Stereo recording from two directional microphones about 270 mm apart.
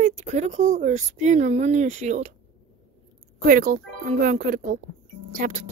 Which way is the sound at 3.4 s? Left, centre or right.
Right.